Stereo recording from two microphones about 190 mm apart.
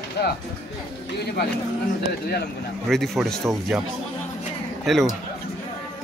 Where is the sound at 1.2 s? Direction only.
55° left (ahead or behind).